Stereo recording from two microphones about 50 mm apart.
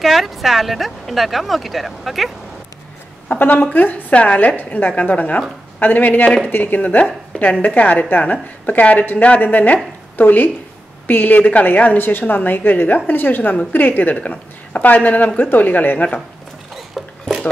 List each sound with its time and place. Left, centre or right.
0.0 s a woman's voice: centre
3.3 s a woman's voice: left
12.0 s a woman's voice: left
16.7 s music: centre